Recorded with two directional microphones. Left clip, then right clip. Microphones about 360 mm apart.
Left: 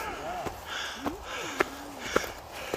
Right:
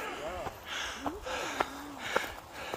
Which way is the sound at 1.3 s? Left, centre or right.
Centre.